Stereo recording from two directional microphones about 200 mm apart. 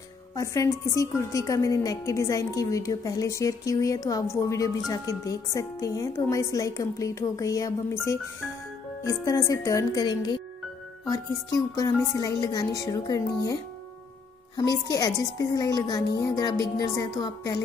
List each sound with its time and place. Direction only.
0.4 s a woman's voice: 15° left (ahead or behind)
14.6 s a woman's voice: 15° left (ahead or behind)